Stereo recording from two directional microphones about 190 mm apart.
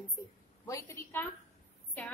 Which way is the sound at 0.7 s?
15° left (ahead or behind).